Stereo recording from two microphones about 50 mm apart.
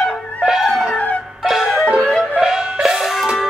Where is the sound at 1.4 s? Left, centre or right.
Centre.